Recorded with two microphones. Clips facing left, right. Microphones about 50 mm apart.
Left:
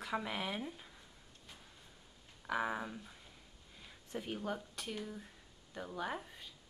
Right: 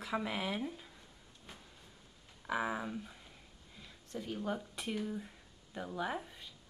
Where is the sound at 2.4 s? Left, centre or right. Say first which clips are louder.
Right 1 dB; centre.